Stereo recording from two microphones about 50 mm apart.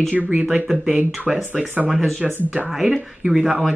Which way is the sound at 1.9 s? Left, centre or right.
Centre.